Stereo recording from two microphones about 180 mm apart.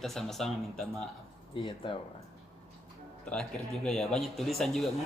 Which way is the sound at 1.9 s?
25° left (ahead or behind).